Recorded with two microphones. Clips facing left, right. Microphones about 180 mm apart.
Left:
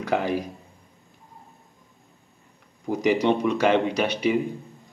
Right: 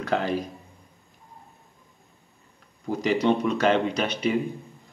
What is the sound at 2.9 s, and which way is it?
Speech, 15° left (ahead or behind).